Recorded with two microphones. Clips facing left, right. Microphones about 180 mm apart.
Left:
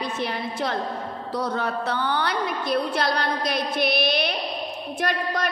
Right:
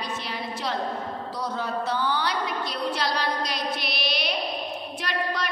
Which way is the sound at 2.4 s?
55° left (ahead or behind).